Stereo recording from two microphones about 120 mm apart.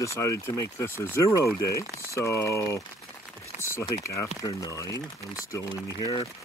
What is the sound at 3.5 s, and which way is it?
Typing, 80° left.